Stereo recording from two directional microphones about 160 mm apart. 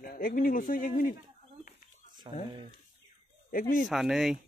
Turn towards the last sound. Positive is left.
turn(degrees=0)  # may be behind; listen again after turning